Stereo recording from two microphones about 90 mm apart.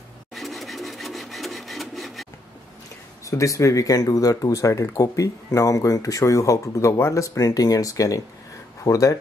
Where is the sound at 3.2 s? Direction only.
35° left (ahead or behind).